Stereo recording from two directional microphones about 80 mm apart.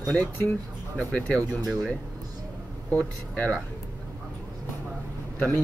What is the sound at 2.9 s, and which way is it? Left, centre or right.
Speech, left.